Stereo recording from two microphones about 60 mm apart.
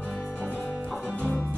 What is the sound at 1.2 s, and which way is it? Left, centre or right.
Music, left.